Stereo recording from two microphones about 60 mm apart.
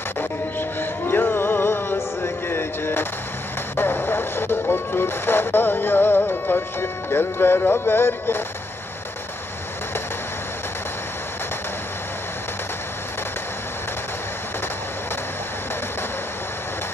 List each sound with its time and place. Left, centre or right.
0.2 s music: left